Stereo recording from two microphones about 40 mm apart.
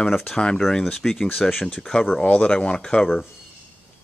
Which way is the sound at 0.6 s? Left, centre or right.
Centre.